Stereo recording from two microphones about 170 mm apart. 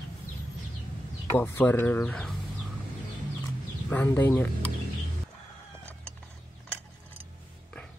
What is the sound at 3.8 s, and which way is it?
Speech, 10° left (ahead or behind).